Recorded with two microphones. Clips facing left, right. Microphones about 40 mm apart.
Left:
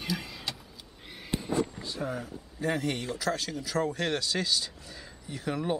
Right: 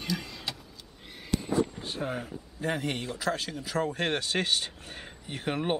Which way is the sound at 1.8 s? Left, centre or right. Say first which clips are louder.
Right 1 dB; right.